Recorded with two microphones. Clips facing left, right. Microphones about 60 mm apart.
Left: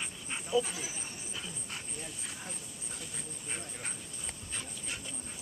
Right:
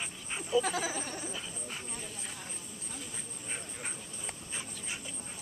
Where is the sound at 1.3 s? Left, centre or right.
Centre.